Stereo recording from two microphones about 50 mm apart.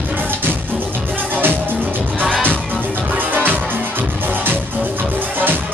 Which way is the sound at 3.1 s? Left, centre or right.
Right.